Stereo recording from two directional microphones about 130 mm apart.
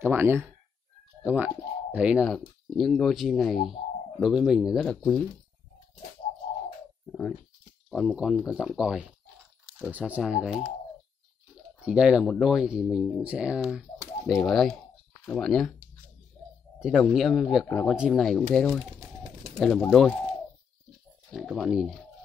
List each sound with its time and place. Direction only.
0.0 s speech: 15° right (ahead or behind)
2.2 s speech: centre (ahead or behind)
4.8 s speech: 5° left (ahead or behind)
7.1 s a sound: 15° left (ahead or behind)
7.9 s speech: centre (ahead or behind)
11.8 s speech: 5° right (ahead or behind)
16.8 s speech: centre (ahead or behind)
21.3 s speech: 5° right (ahead or behind)